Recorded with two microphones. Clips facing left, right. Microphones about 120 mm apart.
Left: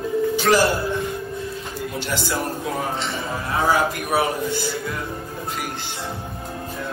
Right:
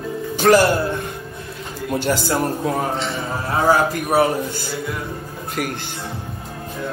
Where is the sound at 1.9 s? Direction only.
45° right (ahead or behind).